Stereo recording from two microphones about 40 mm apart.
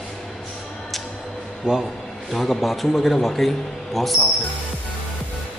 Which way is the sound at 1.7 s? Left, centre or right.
Right.